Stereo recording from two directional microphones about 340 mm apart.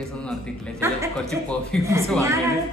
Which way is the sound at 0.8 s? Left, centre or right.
Centre.